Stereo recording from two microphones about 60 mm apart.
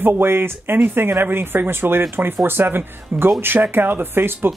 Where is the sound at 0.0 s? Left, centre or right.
Right.